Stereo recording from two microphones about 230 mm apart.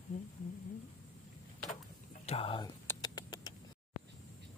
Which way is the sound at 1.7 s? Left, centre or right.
Left.